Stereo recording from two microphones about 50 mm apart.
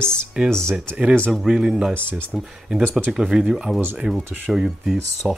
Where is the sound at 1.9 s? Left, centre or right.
Right.